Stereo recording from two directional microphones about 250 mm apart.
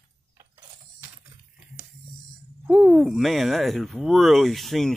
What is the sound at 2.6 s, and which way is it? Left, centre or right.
Speech, centre.